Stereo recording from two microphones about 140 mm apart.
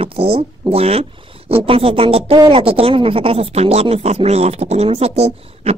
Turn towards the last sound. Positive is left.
turn(degrees=-50)  # may be behind; listen again after turning